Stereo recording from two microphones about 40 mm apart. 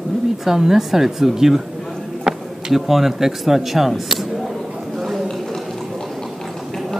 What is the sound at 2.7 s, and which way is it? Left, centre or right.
Speech, centre.